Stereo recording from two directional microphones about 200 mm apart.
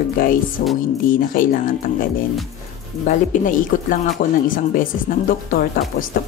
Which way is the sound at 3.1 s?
40° left (ahead or behind).